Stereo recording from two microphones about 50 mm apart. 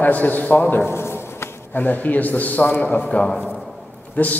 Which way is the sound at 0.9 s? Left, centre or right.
Left.